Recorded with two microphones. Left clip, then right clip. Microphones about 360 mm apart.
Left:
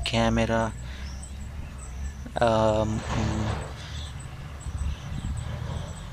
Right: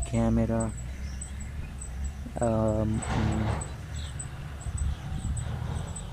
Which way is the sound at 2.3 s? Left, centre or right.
Left.